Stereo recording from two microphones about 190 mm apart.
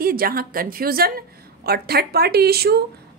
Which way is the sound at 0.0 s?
50° right (ahead or behind).